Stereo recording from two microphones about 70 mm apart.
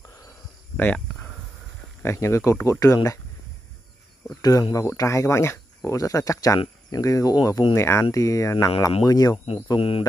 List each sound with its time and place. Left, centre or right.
2.0 s speech: left
4.4 s speech: left
5.9 s speech: left